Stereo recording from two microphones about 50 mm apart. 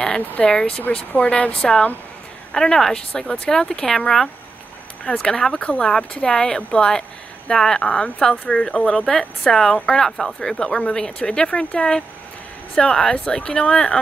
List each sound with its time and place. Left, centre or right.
0.0 s a woman's voice: centre
5.1 s a woman's voice: centre
5.6 s speech: left
6.2 s a woman's voice: centre
10.5 s a woman's voice: left